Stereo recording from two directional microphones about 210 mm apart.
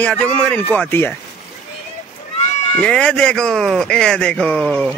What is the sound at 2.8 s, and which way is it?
Speech, 5° left (ahead or behind).